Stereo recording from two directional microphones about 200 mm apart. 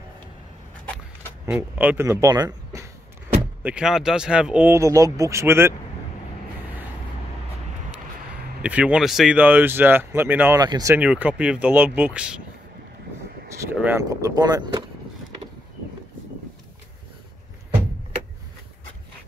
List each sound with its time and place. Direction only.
1.4 s speech: 5° right (ahead or behind)
3.6 s speech: 5° right (ahead or behind)
8.6 s speech: 5° right (ahead or behind)
13.6 s speech: 10° right (ahead or behind)